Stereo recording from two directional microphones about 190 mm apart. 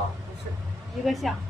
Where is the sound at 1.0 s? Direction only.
Centre (ahead or behind).